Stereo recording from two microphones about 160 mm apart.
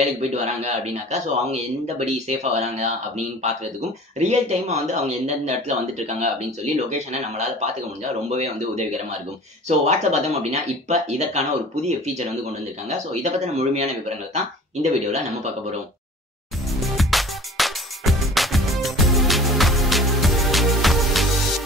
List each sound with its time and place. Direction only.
0.0 s speech: 40° right (ahead or behind)
4.2 s speech: 45° right (ahead or behind)
16.8 s music: centre (ahead or behind)